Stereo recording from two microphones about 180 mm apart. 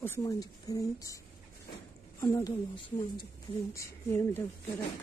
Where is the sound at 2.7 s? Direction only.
25° left (ahead or behind).